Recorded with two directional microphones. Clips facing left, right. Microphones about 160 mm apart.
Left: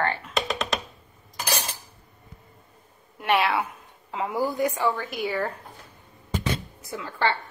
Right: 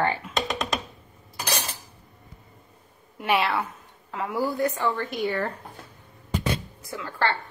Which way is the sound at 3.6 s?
20° left (ahead or behind).